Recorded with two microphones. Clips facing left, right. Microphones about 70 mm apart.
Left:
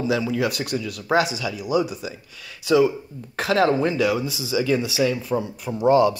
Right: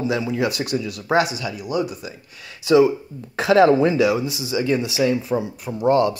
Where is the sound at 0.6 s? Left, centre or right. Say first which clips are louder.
Right 2 dB; right.